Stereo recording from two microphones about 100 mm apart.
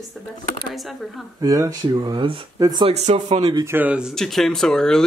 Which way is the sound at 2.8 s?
80° right.